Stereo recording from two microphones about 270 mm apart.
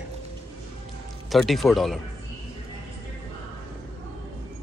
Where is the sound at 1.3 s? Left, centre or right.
Centre.